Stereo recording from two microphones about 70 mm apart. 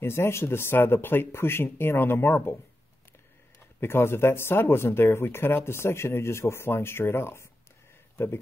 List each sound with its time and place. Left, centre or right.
0.0 s speech: left
3.8 s speech: left